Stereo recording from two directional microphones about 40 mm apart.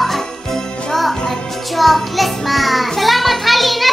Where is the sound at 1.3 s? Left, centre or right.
Centre.